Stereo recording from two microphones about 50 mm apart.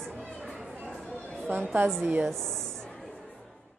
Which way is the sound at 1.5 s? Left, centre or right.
Right.